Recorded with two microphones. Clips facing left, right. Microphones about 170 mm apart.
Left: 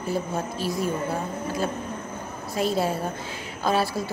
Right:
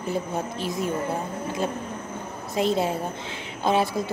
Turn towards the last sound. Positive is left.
turn(degrees=-20)  # may be behind; listen again after turning